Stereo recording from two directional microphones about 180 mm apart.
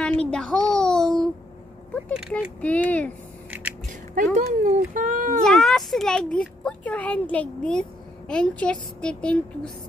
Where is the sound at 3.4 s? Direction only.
10° right (ahead or behind).